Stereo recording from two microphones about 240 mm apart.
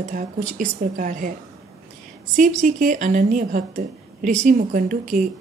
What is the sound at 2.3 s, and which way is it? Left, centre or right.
A woman's voice, right.